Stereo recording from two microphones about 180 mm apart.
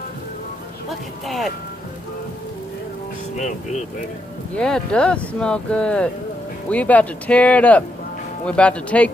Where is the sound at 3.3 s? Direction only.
40° left (ahead or behind).